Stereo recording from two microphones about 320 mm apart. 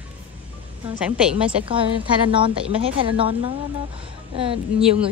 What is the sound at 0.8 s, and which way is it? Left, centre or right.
A woman's voice, centre.